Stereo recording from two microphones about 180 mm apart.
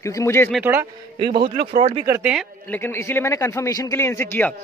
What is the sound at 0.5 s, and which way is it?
Speech, 10° right (ahead or behind).